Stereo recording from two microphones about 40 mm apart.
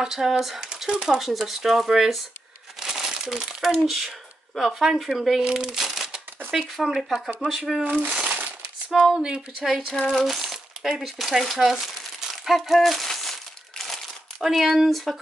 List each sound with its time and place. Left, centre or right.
0.0 s speech: centre
0.7 s speech: centre
2.8 s crumpling: centre
4.6 s speech: centre
5.4 s crumpling: centre
6.5 s speech: centre
7.8 s speech: right
9.1 s speech: centre
10.2 s crumpling: centre
11.0 s speech: centre
12.5 s crumpling: centre
14.4 s speech: centre